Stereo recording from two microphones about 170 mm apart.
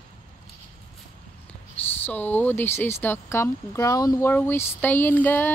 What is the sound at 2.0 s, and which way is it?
Speech, 10° left (ahead or behind).